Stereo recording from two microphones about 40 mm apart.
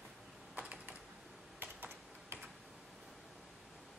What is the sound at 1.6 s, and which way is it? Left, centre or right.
Computer keyboard, right.